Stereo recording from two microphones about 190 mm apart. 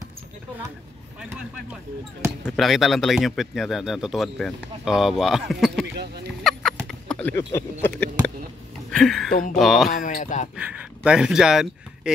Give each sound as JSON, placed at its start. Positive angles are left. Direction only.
{"t": 2.4, "sound": "speech", "side_deg": 0}
{"t": 6.4, "sound": "a sound", "side_deg": 0}
{"t": 8.9, "sound": "speech", "side_deg": 0}
{"t": 9.9, "sound": "speech", "side_deg": 40}
{"t": 11.1, "sound": "speech", "side_deg": -5}